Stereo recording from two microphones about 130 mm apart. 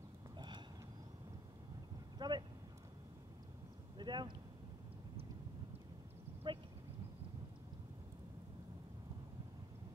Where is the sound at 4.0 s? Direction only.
35° right (ahead or behind).